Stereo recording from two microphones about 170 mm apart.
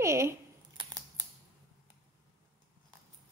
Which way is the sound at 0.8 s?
20° right (ahead or behind).